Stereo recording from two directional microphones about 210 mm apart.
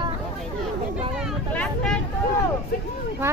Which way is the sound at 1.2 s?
Centre (ahead or behind).